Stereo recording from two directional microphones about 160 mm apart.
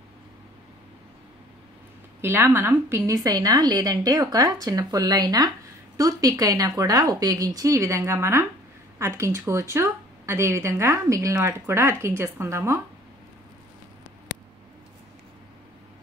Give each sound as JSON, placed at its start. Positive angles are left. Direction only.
{"t": 2.2, "sound": "a woman's voice", "side_deg": -15}